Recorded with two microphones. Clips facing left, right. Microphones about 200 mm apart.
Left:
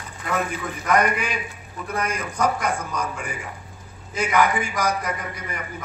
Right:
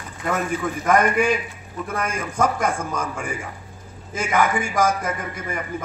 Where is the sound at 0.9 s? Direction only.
50° right (ahead or behind).